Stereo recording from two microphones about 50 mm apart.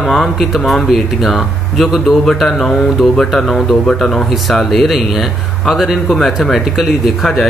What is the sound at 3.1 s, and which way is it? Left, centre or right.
Speech, centre.